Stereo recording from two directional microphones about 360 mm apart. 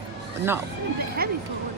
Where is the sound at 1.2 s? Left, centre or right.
Right.